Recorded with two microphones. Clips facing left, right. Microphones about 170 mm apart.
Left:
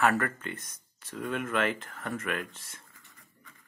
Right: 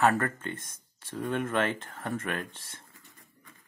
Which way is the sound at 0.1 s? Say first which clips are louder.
Even; 25° right (ahead or behind).